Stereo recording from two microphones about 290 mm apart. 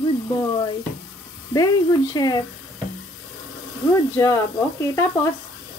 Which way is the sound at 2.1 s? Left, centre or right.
Centre.